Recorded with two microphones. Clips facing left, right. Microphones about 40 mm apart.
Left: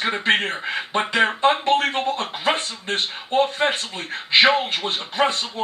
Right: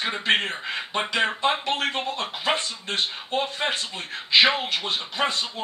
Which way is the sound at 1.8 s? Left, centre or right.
Left.